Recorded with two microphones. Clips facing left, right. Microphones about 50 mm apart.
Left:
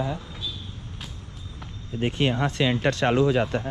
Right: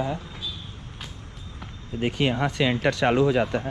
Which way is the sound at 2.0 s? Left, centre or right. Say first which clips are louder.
Even; right.